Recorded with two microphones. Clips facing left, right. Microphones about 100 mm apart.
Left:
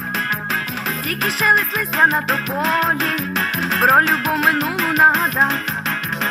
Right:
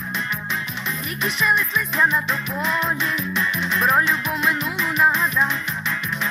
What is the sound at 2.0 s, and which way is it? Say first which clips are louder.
Music: left 5 dB; 90° left.